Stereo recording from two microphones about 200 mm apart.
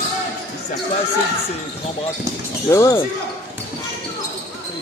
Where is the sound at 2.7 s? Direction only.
15° left (ahead or behind).